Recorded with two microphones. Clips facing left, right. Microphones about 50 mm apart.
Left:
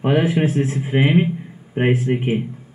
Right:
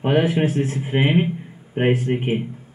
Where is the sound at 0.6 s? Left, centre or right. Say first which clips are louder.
Left 2 dB; centre.